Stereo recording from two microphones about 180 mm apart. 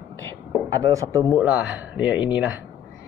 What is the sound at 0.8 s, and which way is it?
Speech, 15° right (ahead or behind).